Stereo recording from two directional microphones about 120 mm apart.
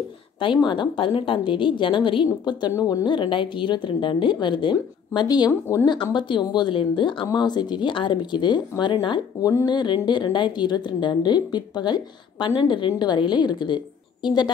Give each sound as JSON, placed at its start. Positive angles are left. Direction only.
{"t": 0.4, "sound": "a woman's voice", "side_deg": 40}
{"t": 2.7, "sound": "a woman's voice", "side_deg": 30}
{"t": 5.5, "sound": "speech", "side_deg": 20}
{"t": 6.1, "sound": "a woman's voice", "side_deg": 40}